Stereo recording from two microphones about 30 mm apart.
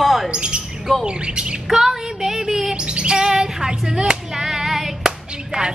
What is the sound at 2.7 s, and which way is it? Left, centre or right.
Chirp, right.